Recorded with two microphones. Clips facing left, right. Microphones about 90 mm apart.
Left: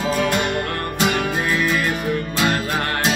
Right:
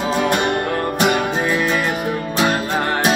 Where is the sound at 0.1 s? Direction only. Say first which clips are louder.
Right 3 dB; 25° right (ahead or behind).